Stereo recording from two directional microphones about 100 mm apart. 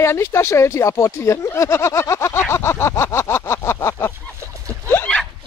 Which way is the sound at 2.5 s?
25° left (ahead or behind).